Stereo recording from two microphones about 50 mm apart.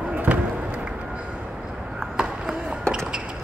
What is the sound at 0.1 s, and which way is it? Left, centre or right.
Basketball bounce, right.